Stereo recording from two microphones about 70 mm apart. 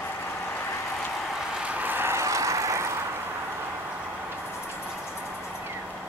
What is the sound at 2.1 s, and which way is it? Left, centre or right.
Vehicle, right.